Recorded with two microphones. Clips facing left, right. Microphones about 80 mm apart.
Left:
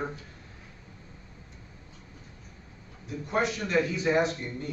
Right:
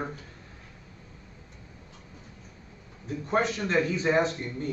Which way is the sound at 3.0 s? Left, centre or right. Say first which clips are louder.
Right 2 dB; right.